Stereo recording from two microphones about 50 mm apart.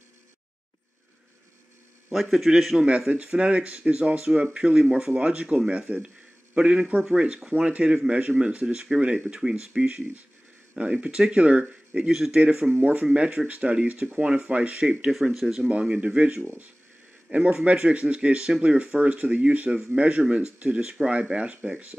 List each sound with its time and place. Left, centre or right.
2.0 s a man's voice: centre
3.1 s speech: centre
12.1 s a man's voice: centre
12.4 s speech: centre
15.3 s speech: centre
15.7 s a man's voice: right